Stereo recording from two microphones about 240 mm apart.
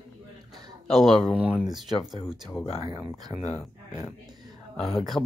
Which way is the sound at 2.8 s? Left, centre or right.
Centre.